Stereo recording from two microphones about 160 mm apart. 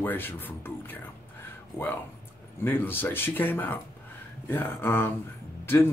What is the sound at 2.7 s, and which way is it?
Speech, 15° left (ahead or behind).